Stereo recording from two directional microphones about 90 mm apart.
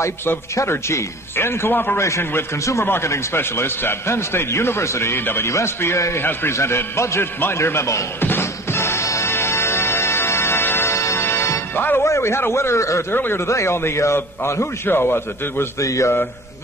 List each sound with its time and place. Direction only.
0.0 s a man's voice: 30° left (ahead or behind)
2.0 s a man's voice: 35° left (ahead or behind)
13.1 s a man's voice: 20° left (ahead or behind)
15.8 s a man's voice: 35° left (ahead or behind)